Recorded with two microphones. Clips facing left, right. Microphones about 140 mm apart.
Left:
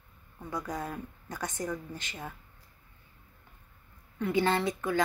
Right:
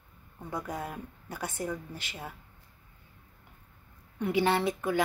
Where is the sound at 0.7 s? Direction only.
5° right (ahead or behind).